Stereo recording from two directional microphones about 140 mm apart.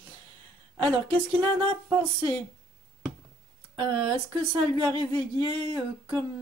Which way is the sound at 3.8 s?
35° right (ahead or behind).